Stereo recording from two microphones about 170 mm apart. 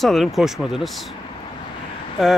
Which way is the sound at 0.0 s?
Centre (ahead or behind).